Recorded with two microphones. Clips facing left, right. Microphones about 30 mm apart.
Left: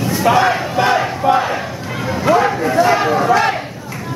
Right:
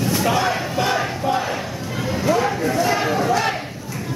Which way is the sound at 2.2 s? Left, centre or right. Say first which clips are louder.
Left 6 dB; left.